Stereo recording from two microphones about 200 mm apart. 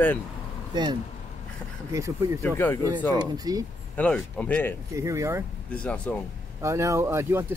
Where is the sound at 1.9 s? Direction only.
15° right (ahead or behind).